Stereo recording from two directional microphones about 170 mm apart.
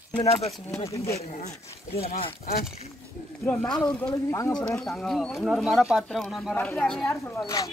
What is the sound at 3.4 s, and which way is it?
Speech, 10° left (ahead or behind).